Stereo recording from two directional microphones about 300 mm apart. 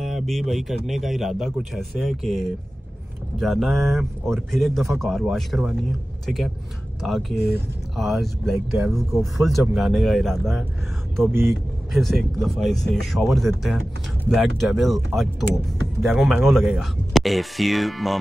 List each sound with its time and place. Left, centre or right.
0.0 s speech: centre
7.3 s speech: left
7.9 s speech: centre